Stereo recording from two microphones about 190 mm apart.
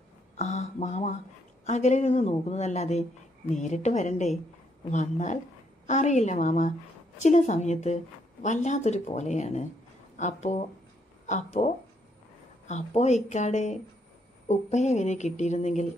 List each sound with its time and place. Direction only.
0.4 s a woman's voice: 35° left (ahead or behind)